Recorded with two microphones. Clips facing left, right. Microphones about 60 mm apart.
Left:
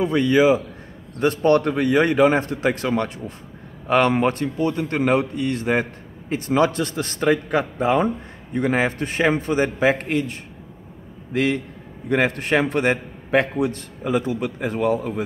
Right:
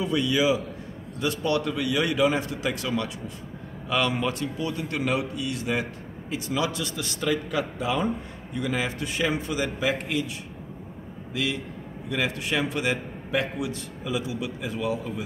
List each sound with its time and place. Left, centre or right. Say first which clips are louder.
0.0 s a man's voice: left 7 dB; left
11.3 s a man's voice: left 8 dB; left